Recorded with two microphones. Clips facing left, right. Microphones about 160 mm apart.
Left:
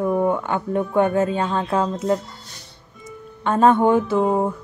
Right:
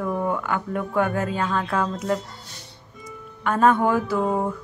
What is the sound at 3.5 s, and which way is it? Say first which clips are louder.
A woman's voice: left 3 dB; 25° left (ahead or behind).